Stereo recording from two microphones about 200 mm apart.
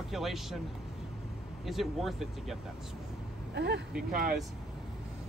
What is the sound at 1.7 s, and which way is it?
Speech, centre (ahead or behind).